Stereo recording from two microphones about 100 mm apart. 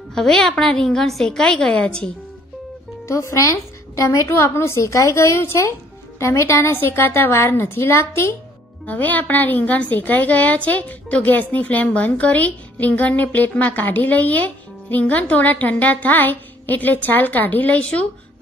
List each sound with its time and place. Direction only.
0.1 s a woman's voice: 5° left (ahead or behind)
3.1 s a woman's voice: 30° left (ahead or behind); by 18.0 s 10° left (ahead or behind)